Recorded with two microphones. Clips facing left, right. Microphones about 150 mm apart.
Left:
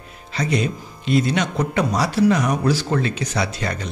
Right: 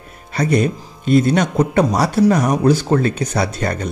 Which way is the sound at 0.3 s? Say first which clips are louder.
Right 5 dB; 55° right (ahead or behind).